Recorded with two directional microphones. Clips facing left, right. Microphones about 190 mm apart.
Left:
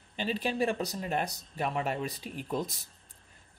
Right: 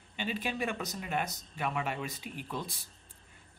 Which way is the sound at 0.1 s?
35° left (ahead or behind).